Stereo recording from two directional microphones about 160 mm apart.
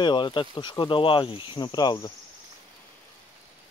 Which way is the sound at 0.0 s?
30° left (ahead or behind).